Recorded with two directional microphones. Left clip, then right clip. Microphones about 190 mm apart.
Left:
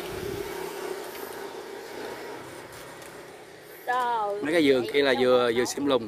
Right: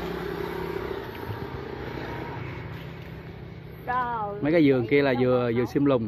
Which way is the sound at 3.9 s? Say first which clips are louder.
Left 1 dB; 45° left (ahead or behind).